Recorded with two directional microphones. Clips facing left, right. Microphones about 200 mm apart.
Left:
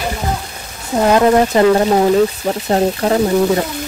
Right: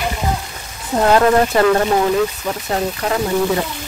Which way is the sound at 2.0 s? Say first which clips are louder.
Left 4 dB; 35° left (ahead or behind).